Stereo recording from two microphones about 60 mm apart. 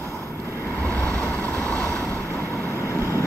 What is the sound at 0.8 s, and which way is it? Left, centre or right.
Vehicle, left.